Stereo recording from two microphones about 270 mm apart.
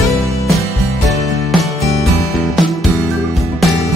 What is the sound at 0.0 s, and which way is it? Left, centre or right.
Music, centre.